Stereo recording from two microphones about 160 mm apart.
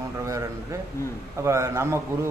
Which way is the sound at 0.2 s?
20° right (ahead or behind).